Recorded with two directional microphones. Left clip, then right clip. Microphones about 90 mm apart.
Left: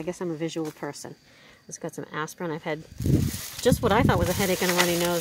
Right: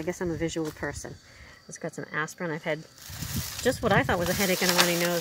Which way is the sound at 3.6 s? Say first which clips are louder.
Left 4 dB; 75° left (ahead or behind).